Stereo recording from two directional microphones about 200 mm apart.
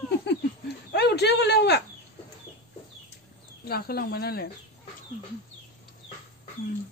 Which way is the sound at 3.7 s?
50° left (ahead or behind).